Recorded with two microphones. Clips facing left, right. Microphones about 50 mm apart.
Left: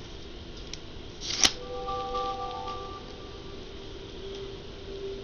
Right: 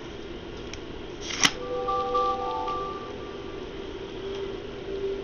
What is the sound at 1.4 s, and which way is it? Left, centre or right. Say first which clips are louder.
Music: right 5 dB; right.